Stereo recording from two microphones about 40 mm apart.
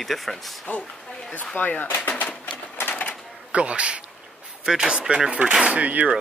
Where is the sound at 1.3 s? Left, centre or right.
Left.